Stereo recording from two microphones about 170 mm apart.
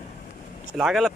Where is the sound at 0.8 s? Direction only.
Centre (ahead or behind).